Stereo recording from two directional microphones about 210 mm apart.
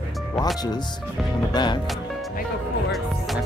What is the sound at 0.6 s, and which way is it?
Speech, 20° left (ahead or behind).